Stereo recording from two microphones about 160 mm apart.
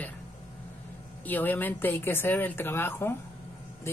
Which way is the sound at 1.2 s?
10° left (ahead or behind).